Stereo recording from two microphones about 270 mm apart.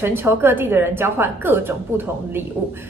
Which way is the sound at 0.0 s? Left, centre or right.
Centre.